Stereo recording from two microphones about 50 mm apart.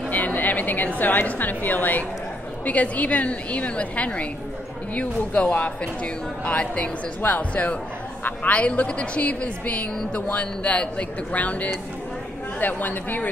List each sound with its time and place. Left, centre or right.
0.1 s a woman's voice: left